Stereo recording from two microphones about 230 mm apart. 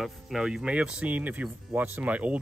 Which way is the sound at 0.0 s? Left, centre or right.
Centre.